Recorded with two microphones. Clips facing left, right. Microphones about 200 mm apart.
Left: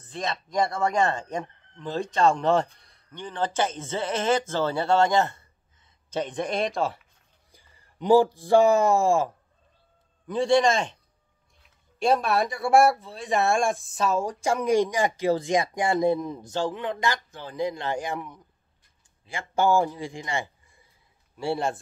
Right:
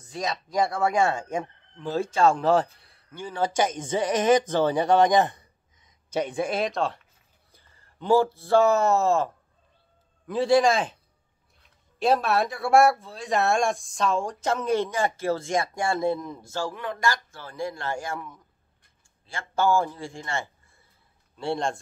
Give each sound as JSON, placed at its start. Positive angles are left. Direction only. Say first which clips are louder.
{"t": 0.0, "sound": "speech", "louder": "right 1 dB", "side_deg": -5}
{"t": 7.5, "sound": "speech", "louder": "left 4 dB", "side_deg": 15}
{"t": 10.2, "sound": "a man's voice", "louder": "right 1 dB", "side_deg": -5}